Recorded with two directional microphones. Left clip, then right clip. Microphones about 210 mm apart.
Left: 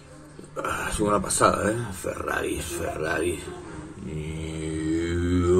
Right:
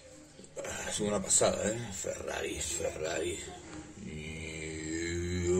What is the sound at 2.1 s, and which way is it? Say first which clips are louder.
A man's voice: left 9 dB; 15° left (ahead or behind).